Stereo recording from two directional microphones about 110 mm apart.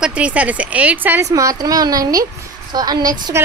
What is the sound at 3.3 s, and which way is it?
Speech, 25° right (ahead or behind).